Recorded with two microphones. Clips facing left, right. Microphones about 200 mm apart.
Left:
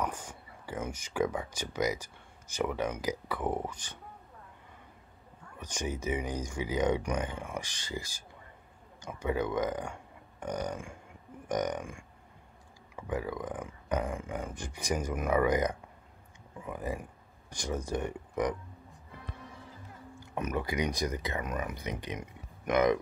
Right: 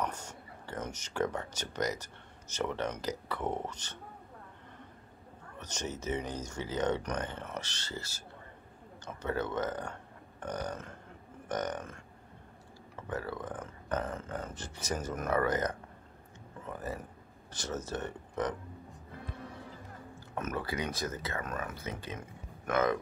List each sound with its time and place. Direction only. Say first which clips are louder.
0.0 s speech: left 1 dB; 10° left (ahead or behind)
5.6 s speech: left 3 dB; 10° left (ahead or behind)
20.2 s speech: left 3 dB; 15° left (ahead or behind)